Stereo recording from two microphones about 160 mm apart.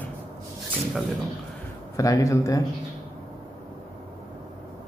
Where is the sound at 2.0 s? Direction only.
20° left (ahead or behind).